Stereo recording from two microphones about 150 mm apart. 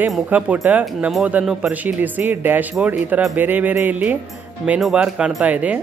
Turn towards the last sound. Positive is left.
turn(degrees=-10)  # may be behind; listen again after turning